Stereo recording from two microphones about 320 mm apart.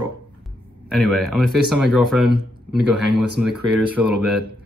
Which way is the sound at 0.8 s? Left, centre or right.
Centre.